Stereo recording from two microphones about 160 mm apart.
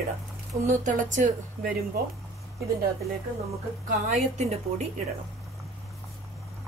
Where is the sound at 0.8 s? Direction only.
50° right (ahead or behind).